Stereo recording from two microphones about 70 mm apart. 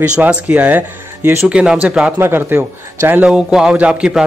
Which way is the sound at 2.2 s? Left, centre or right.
Right.